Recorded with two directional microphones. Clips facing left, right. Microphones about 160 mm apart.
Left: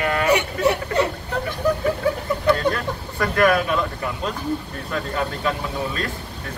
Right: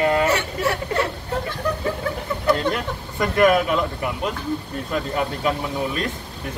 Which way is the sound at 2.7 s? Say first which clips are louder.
Left 1 dB; 20° right (ahead or behind).